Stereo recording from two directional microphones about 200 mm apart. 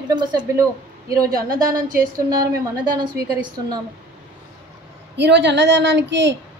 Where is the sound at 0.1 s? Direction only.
20° right (ahead or behind).